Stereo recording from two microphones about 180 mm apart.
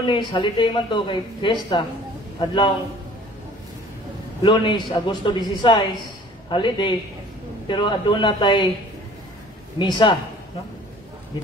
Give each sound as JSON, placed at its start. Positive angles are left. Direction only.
{"t": 0.0, "sound": "a man's voice", "side_deg": 25}
{"t": 4.4, "sound": "speech", "side_deg": 25}
{"t": 9.8, "sound": "speech", "side_deg": 25}